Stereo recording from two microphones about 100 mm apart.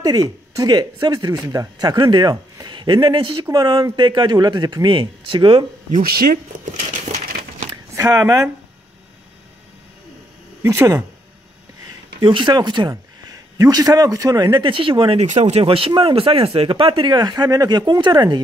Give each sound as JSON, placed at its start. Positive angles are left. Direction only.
{"t": 0.0, "sound": "a man's voice", "side_deg": -40}
{"t": 7.9, "sound": "speech", "side_deg": -30}
{"t": 10.6, "sound": "speech", "side_deg": -30}
{"t": 12.2, "sound": "a man's voice", "side_deg": -50}
{"t": 12.9, "sound": "a man's voice", "side_deg": -35}